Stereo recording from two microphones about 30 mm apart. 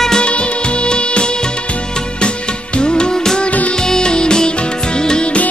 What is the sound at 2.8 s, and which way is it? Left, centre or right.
Music, left.